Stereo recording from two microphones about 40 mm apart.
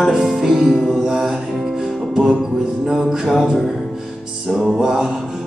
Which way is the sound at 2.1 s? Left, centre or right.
Right.